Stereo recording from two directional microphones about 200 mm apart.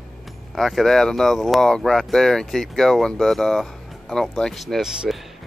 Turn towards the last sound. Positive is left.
turn(degrees=0)  # may be behind; listen again after turning